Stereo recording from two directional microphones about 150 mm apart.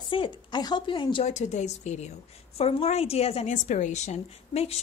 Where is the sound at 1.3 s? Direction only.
50° left (ahead or behind).